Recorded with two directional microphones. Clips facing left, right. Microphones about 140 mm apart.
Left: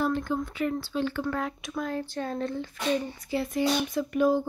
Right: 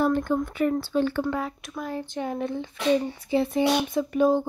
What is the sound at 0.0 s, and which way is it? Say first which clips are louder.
Speech: right 4 dB; 55° right (ahead or behind).